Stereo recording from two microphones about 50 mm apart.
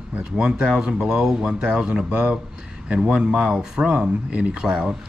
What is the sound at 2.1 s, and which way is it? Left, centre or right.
Speech, right.